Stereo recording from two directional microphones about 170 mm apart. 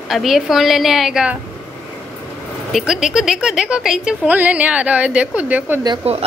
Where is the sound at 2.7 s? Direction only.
5° right (ahead or behind).